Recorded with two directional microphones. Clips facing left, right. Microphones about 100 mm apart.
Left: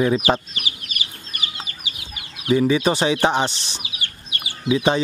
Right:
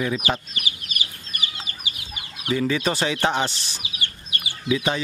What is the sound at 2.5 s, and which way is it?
Speech, 15° left (ahead or behind).